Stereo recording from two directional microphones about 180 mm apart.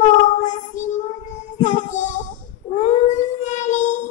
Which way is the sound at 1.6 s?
45° left (ahead or behind).